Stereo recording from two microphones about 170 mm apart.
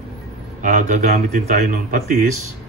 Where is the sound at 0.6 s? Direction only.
45° right (ahead or behind).